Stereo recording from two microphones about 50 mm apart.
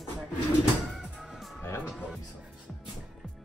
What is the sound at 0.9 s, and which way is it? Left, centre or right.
Music, centre.